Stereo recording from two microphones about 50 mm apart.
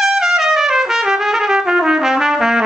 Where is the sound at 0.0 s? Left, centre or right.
Centre.